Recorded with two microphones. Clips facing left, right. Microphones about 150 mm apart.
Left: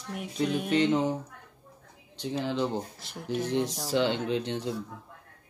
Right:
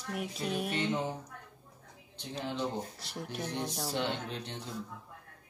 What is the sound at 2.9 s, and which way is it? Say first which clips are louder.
Speech: left 7 dB; centre (ahead or behind).